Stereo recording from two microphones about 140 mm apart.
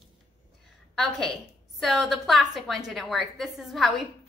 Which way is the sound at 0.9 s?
5° left (ahead or behind).